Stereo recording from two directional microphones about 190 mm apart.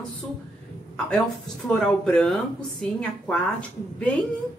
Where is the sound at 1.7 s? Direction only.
5° left (ahead or behind).